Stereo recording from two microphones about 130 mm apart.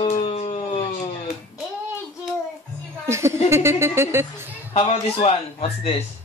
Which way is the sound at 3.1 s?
20° right (ahead or behind).